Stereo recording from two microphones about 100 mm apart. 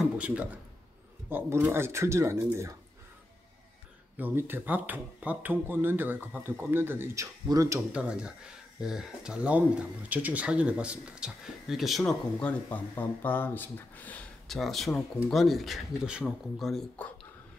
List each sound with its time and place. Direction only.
0.0 s a sound: 10° right (ahead or behind)
1.3 s speech: 20° right (ahead or behind)
4.2 s speech: 20° right (ahead or behind)
7.4 s speech: 35° right (ahead or behind)
7.9 s speech: 10° right (ahead or behind)
12.0 s speech: 10° left (ahead or behind)
14.5 s speech: centre (ahead or behind)